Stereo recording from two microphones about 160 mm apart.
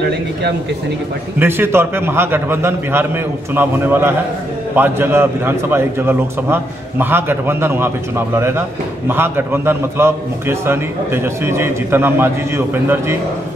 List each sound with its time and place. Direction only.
1.4 s a man's voice: 15° right (ahead or behind)